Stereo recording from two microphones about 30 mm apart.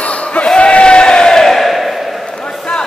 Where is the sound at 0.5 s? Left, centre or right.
Left.